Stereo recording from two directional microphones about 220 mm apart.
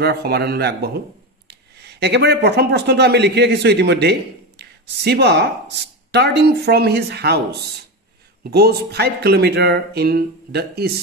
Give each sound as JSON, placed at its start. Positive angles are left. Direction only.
{"t": 0.0, "sound": "speech", "side_deg": -45}